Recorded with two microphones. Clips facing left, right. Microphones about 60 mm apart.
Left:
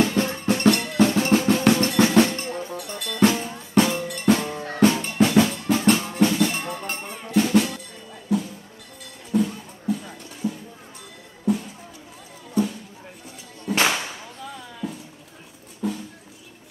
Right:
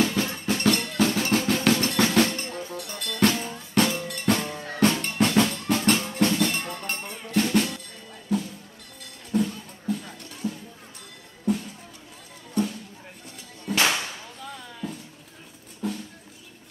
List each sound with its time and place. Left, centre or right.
0.0 s music: centre
0.3 s drum: centre
8.3 s music: centre
13.7 s whip: centre
14.4 s music: centre